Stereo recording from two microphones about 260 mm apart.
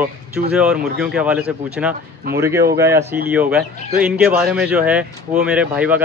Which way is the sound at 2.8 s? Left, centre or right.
Centre.